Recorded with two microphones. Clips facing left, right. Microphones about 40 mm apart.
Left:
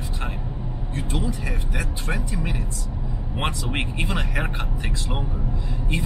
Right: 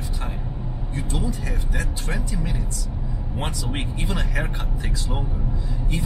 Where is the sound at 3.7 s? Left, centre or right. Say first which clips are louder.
Left 2 dB; left.